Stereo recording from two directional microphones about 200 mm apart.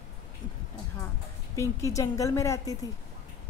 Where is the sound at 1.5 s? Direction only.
15° left (ahead or behind).